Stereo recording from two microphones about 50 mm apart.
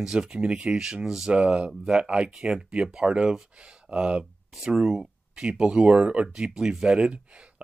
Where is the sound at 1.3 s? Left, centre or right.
Right.